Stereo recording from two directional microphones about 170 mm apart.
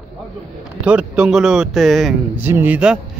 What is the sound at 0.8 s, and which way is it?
A man's voice, 5° right (ahead or behind).